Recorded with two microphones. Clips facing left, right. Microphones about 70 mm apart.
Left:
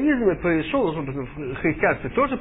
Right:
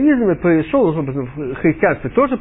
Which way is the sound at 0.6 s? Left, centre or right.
Right.